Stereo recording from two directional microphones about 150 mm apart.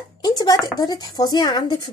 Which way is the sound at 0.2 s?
25° left (ahead or behind).